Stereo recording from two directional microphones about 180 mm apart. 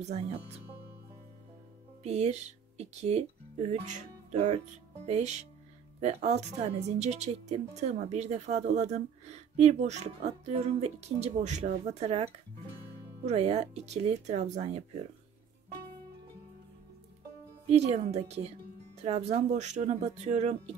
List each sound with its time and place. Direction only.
0.0 s speech: 40° right (ahead or behind)
2.0 s speech: 35° right (ahead or behind)
17.6 s speech: 40° right (ahead or behind)